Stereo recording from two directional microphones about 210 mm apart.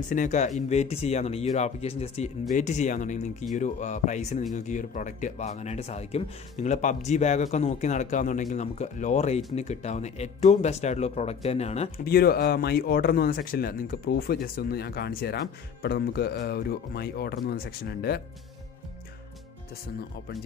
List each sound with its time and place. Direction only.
0.1 s speech: 35° left (ahead or behind)
12.0 s speech: 45° left (ahead or behind)